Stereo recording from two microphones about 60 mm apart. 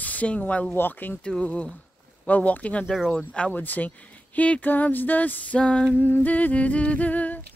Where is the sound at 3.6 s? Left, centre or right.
Left.